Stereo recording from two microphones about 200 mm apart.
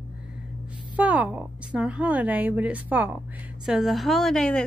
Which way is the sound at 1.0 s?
5° right (ahead or behind).